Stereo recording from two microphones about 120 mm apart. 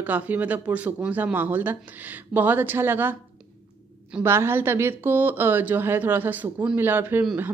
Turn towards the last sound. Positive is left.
turn(degrees=-20)  # may be behind; listen again after turning